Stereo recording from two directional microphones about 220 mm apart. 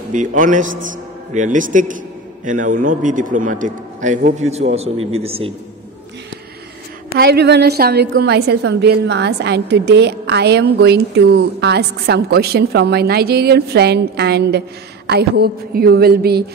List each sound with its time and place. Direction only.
0.1 s a man's voice: 35° right (ahead or behind)
7.2 s a woman's voice: 45° right (ahead or behind)